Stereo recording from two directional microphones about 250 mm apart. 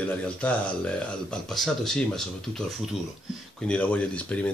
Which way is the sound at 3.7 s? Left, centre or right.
Centre.